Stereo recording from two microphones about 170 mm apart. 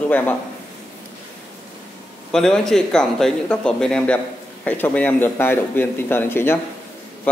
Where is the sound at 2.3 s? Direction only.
5° left (ahead or behind).